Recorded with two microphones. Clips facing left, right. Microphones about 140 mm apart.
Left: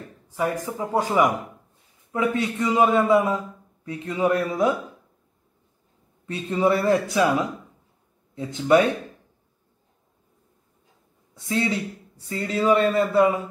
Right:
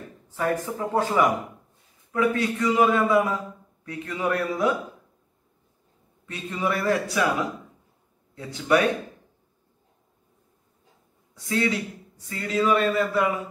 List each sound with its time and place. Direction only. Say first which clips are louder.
0.3 s a man's voice: even; 15° left (ahead or behind)
6.2 s a man's voice: left 6 dB; 30° left (ahead or behind)
11.3 s a man's voice: even; 25° left (ahead or behind)